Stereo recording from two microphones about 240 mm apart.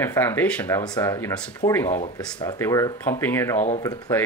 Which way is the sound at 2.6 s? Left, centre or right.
Centre.